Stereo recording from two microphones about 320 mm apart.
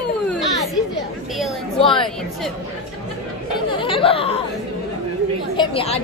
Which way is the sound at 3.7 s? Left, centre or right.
Centre.